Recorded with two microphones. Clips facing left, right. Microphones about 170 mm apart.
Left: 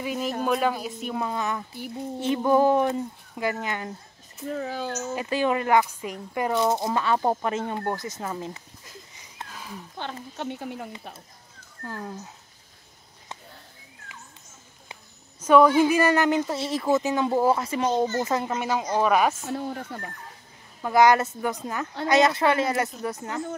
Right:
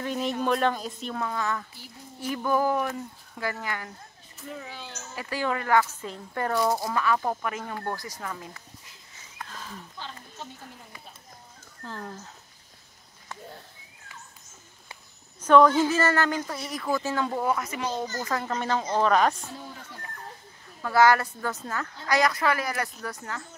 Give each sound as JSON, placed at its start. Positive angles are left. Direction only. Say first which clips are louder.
{"t": 0.0, "sound": "speech", "louder": "even", "side_deg": 5}
{"t": 1.2, "sound": "speech", "louder": "even", "side_deg": 20}
{"t": 4.6, "sound": "speech", "louder": "left 14 dB", "side_deg": 45}
{"t": 5.1, "sound": "speech", "louder": "left 4 dB", "side_deg": 20}
{"t": 6.6, "sound": "speech", "louder": "left 1 dB", "side_deg": 25}
{"t": 9.5, "sound": "a sound", "louder": "left 2 dB", "side_deg": 10}
{"t": 9.9, "sound": "speech", "louder": "left 12 dB", "side_deg": 65}
{"t": 11.8, "sound": "speech", "louder": "left 3 dB", "side_deg": 10}
{"t": 15.4, "sound": "speech", "louder": "left 2 dB", "side_deg": 10}
{"t": 17.3, "sound": "speech", "louder": "left 6 dB", "side_deg": 30}
{"t": 19.5, "sound": "speech", "louder": "left 10 dB", "side_deg": 65}
{"t": 20.8, "sound": "speech", "louder": "left 2 dB", "side_deg": 20}